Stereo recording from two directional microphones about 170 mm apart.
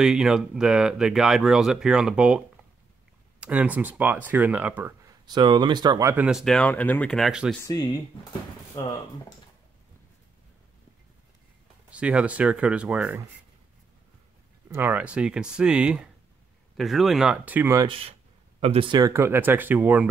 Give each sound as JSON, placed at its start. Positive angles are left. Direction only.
{"t": 0.0, "sound": "speech", "side_deg": -5}
{"t": 5.2, "sound": "speech", "side_deg": -25}
{"t": 6.2, "sound": "speech", "side_deg": 0}
{"t": 7.6, "sound": "speech", "side_deg": 25}
{"t": 11.9, "sound": "speech", "side_deg": -5}
{"t": 14.7, "sound": "speech", "side_deg": -10}
{"t": 17.7, "sound": "speech", "side_deg": -30}